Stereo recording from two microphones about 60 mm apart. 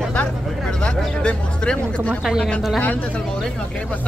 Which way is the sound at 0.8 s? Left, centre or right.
Centre.